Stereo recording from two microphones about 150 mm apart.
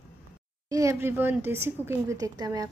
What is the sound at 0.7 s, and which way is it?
A woman's voice, 20° right (ahead or behind).